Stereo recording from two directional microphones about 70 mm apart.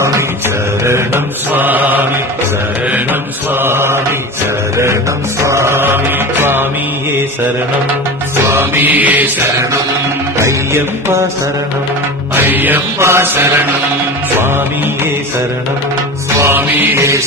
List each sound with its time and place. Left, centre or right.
0.8 s mantra: right
5.4 s mantra: right
8.4 s music: right
10.4 s mantra: right
12.4 s music: right
13.0 s mantra: right
16.3 s mantra: right